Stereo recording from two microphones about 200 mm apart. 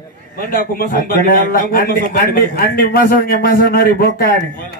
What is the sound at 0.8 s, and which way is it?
A man's voice, 45° left (ahead or behind).